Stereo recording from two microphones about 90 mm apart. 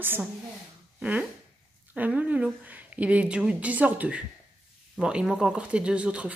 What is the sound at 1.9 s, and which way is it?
Speech, 15° right (ahead or behind).